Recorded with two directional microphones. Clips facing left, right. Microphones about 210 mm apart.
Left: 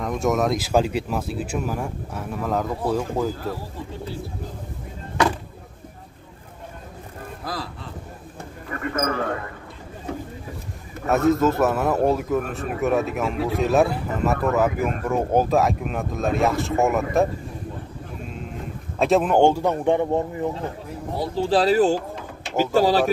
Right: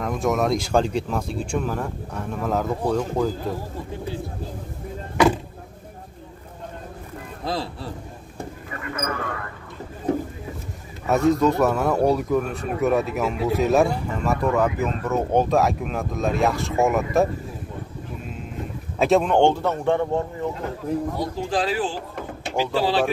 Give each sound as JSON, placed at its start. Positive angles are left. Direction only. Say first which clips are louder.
{"t": 0.0, "sound": "a man's voice", "louder": "even", "side_deg": 0}
{"t": 7.4, "sound": "music", "louder": "right 5 dB", "side_deg": -25}
{"t": 8.6, "sound": "a sound", "louder": "left 6 dB", "side_deg": 50}
{"t": 11.1, "sound": "a man's voice", "louder": "even", "side_deg": 0}
{"t": 18.9, "sound": "speech", "louder": "even", "side_deg": 0}
{"t": 21.4, "sound": "speech", "louder": "left 8 dB", "side_deg": 35}